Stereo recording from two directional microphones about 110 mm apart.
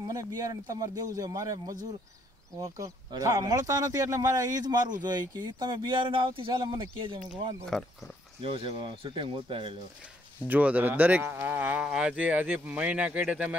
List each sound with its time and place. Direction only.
0.1 s speech: 35° right (ahead or behind); by 7.2 s 50° right (ahead or behind)
7.7 s speech: 5° left (ahead or behind)
8.4 s speech: 55° right (ahead or behind)
10.4 s insect: 15° right (ahead or behind)